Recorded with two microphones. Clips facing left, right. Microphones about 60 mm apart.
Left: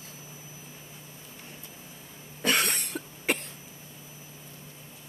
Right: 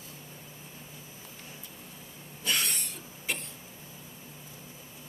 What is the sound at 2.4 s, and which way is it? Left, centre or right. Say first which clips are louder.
Cough: left 5 dB; left.